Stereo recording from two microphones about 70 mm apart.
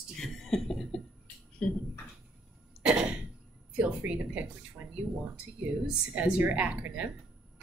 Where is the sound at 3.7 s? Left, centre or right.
Right.